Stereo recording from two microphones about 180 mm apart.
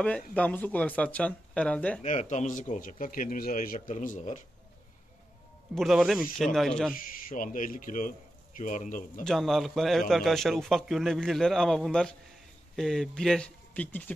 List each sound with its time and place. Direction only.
0.0 s speech: 5° left (ahead or behind)
2.0 s a man's voice: 40° left (ahead or behind)
5.8 s a man's voice: centre (ahead or behind)
7.2 s a man's voice: 45° left (ahead or behind)
9.2 s a man's voice: centre (ahead or behind)